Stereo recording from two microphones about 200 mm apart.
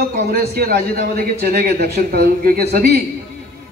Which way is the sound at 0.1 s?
45° right (ahead or behind).